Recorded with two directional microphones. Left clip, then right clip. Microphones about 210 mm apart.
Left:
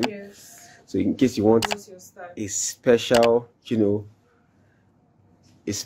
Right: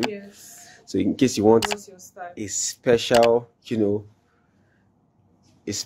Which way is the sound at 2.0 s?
35° right (ahead or behind).